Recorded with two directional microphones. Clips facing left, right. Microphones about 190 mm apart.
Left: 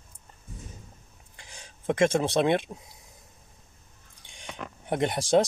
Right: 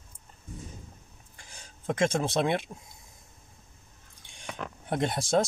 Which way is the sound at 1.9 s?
60° left (ahead or behind).